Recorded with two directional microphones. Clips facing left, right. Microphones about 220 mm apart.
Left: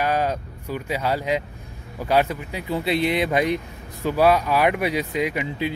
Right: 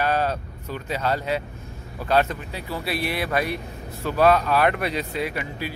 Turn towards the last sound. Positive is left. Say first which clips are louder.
# left 4 dB
turn(degrees=20)  # may be behind; listen again after turning